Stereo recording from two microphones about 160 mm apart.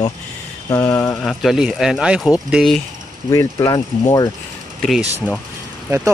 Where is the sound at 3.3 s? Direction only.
20° left (ahead or behind).